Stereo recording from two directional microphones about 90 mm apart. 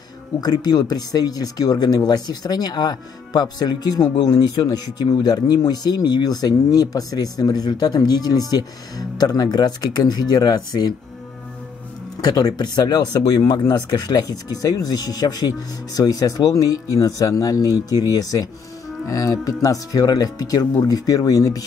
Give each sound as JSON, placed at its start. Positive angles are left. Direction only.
{"t": 0.4, "sound": "speech", "side_deg": 45}
{"t": 12.2, "sound": "speech", "side_deg": 45}